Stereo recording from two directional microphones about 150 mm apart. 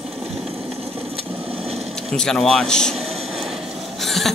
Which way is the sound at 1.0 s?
40° right (ahead or behind).